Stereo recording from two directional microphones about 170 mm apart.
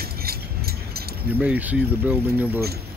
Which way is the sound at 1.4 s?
10° right (ahead or behind).